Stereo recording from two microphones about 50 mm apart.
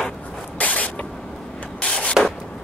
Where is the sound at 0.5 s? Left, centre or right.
Left.